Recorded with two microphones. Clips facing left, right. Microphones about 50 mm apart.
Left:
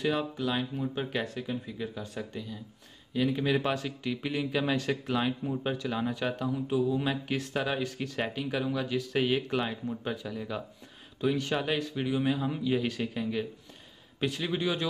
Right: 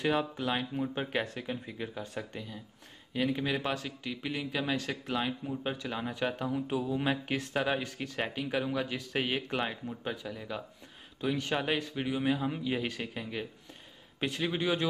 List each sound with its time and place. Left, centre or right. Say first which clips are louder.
0.0 s speech: left 1 dB; right
3.3 s speech: left 4 dB; centre
3.5 s speech: left 4 dB; centre
6.3 s speech: left 3 dB; right
9.8 s speech: left 3 dB; centre
11.3 s speech: left 1 dB; centre